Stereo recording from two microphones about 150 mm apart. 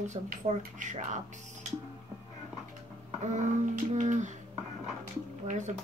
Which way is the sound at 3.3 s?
55° right (ahead or behind).